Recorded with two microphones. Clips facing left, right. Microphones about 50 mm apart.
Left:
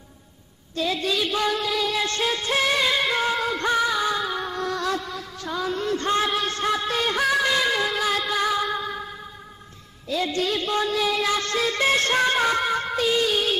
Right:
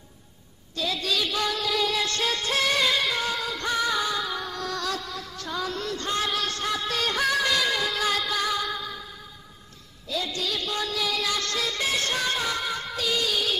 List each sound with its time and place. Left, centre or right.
0.7 s child singing: left
3.1 s music: left
5.9 s music: left
10.0 s music: left